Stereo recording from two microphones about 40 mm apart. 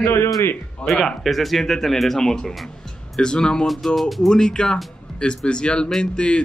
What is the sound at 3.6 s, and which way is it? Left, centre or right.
Speech, centre.